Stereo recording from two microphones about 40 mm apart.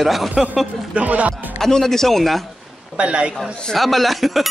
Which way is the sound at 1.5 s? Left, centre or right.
Centre.